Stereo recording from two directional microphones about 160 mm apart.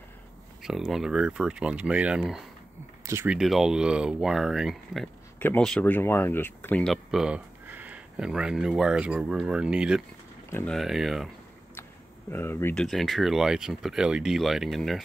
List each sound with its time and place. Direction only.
0.6 s speech: centre (ahead or behind)
3.1 s speech: 15° right (ahead or behind)
3.3 s speech: 5° right (ahead or behind)
10.5 s speech: 10° left (ahead or behind)
10.8 s speech: centre (ahead or behind)
12.3 s speech: 15° left (ahead or behind)
12.8 s speech: centre (ahead or behind)